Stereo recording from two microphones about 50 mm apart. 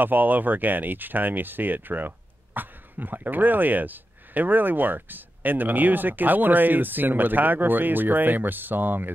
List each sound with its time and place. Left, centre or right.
0.0 s speech: right